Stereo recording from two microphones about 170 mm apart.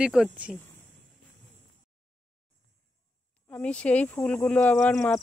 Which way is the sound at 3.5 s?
5° left (ahead or behind).